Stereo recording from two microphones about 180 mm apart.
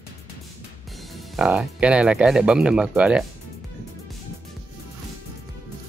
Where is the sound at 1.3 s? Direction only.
5° right (ahead or behind).